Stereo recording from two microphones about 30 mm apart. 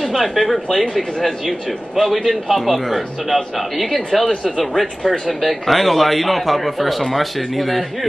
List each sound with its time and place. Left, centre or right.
0.0 s a man's voice: centre